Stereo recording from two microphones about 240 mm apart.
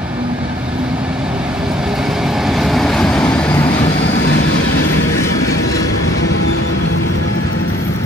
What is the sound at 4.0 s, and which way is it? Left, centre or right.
Vehicle, left.